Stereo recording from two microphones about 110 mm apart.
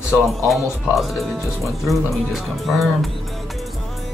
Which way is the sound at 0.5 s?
Centre (ahead or behind).